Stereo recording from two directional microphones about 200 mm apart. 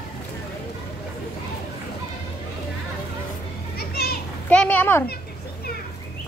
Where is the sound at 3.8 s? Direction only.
50° left (ahead or behind).